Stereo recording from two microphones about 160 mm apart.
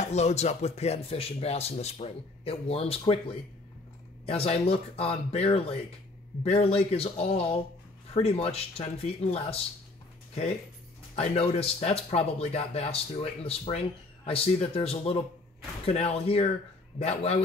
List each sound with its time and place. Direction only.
0.0 s a man's voice: 45° left (ahead or behind)
11.1 s a man's voice: 40° left (ahead or behind)